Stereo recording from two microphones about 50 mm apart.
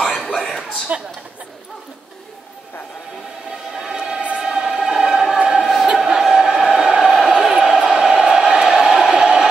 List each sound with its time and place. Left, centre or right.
0.0 s chuckle: centre
0.9 s a woman's voice: right
3.7 s music: centre
5.4 s choir: centre
5.9 s a sound: centre
7.1 s a sound: centre